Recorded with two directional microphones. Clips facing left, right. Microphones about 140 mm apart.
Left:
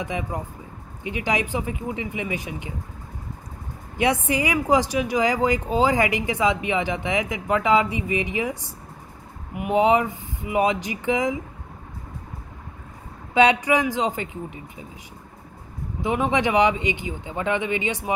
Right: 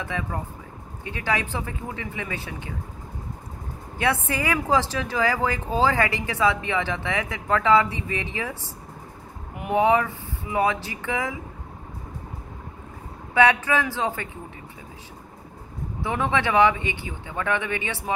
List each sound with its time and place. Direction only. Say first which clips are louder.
0.0 s speech: left 2 dB; 15° left (ahead or behind)
4.0 s speech: left 3 dB; 15° left (ahead or behind)
9.7 s speech: left 1 dB; 20° left (ahead or behind)
13.3 s speech: left 2 dB; 20° left (ahead or behind)
16.0 s speech: left 3 dB; 15° left (ahead or behind)